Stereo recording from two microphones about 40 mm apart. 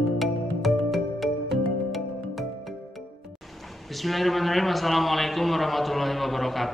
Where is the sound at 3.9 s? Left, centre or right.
Centre.